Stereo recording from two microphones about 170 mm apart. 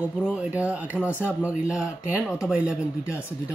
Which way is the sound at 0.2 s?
5° right (ahead or behind).